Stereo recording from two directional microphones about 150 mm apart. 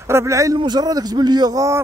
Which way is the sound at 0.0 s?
20° right (ahead or behind).